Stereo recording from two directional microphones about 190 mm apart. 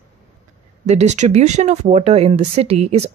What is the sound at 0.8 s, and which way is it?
Speech, 35° right (ahead or behind).